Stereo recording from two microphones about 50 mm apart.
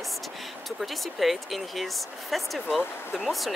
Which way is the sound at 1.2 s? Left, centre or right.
Centre.